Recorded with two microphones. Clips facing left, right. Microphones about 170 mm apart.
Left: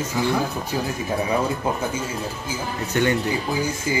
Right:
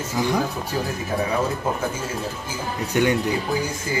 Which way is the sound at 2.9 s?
10° right (ahead or behind).